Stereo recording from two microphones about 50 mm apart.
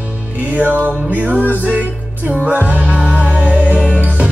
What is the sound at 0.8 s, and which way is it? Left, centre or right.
Music, right.